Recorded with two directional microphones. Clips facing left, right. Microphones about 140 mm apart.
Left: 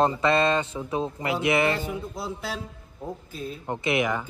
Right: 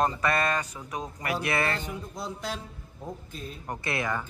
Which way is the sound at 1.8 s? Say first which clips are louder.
Left 4 dB; 5° left (ahead or behind).